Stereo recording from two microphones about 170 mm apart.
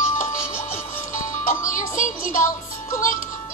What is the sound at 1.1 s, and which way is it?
Music, 50° left (ahead or behind).